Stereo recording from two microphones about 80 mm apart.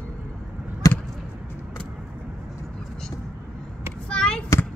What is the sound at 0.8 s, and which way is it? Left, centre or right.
Basketball bounce, left.